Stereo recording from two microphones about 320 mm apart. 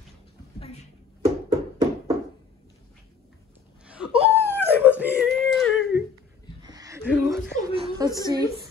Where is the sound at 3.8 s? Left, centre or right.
Centre.